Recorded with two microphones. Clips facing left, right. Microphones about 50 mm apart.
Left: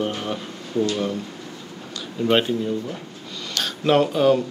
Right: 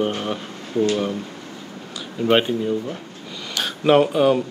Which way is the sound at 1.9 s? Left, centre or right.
Centre.